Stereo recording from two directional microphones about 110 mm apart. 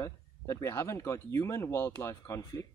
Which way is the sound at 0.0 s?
25° left (ahead or behind).